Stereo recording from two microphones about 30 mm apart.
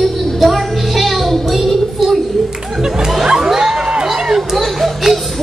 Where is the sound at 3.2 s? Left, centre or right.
Right.